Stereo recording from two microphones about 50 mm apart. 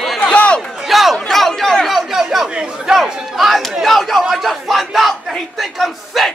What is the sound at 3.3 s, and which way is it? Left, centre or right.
Crowd, centre.